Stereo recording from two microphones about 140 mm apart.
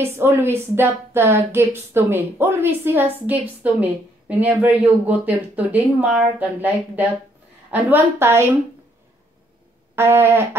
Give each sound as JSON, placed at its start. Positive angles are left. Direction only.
{"t": 0.0, "sound": "speech", "side_deg": -15}
{"t": 9.9, "sound": "speech", "side_deg": -15}